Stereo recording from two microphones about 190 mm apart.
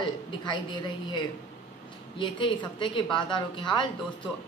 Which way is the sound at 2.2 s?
25° left (ahead or behind).